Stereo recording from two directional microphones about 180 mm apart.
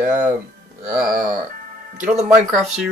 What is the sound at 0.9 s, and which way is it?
Wail, 50° right (ahead or behind).